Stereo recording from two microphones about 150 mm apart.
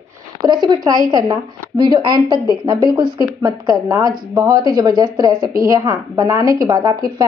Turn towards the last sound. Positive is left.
turn(degrees=-25)  # may be behind; listen again after turning